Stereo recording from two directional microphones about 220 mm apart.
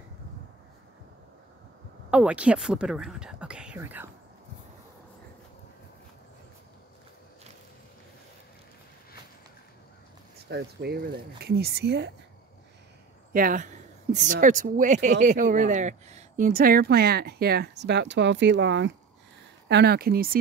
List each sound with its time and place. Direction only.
2.0 s speech: 5° right (ahead or behind)
10.5 s speech: 45° right (ahead or behind)
13.3 s speech: 40° right (ahead or behind)